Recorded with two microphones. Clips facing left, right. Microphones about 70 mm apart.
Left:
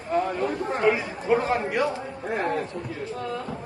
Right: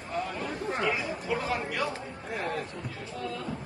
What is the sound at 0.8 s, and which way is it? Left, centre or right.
Speech, left.